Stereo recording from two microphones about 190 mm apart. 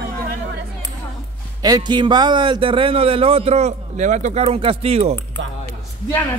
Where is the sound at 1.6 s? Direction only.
20° right (ahead or behind).